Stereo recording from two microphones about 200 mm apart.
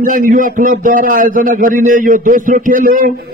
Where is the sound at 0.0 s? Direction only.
40° right (ahead or behind).